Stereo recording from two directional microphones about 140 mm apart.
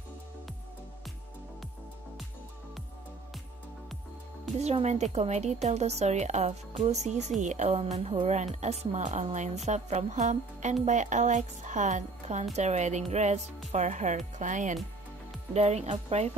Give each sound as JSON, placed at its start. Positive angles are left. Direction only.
{"t": 4.6, "sound": "a woman's voice", "side_deg": -50}
{"t": 15.5, "sound": "a woman's voice", "side_deg": -50}